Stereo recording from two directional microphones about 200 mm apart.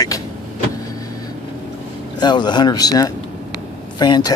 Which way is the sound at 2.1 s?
20° left (ahead or behind).